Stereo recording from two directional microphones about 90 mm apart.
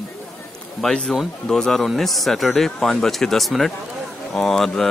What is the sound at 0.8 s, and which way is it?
Speech, 10° left (ahead or behind).